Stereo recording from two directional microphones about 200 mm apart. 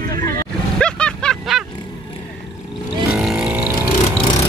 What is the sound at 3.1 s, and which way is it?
Vehicle, 5° right (ahead or behind).